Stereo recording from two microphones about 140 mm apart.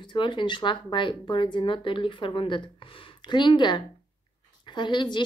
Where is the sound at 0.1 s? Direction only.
35° left (ahead or behind).